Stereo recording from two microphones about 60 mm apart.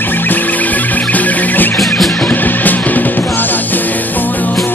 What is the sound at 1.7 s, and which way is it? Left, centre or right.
Music, centre.